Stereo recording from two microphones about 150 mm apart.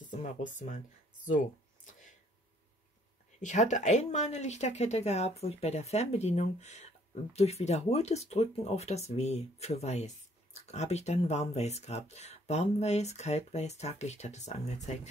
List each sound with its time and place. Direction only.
3.3 s speech: 50° left (ahead or behind)